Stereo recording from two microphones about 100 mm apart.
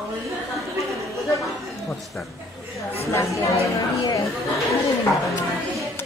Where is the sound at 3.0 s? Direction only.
30° left (ahead or behind).